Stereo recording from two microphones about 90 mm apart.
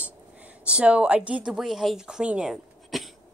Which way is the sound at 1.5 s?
Centre (ahead or behind).